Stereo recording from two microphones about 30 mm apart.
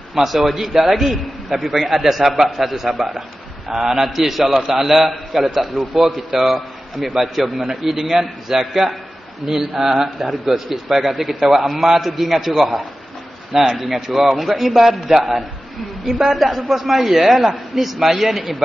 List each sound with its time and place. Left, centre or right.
0.1 s a man's voice: centre
3.0 s a sound: centre
3.7 s a man's voice: centre
10.0 s a man's voice: centre
14.1 s a man's voice: centre